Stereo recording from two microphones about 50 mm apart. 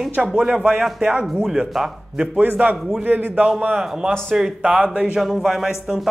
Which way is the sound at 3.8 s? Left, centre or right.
Centre.